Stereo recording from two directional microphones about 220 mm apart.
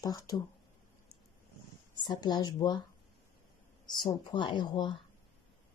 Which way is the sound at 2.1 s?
20° left (ahead or behind).